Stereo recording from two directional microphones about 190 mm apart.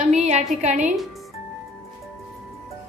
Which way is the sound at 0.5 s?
40° right (ahead or behind).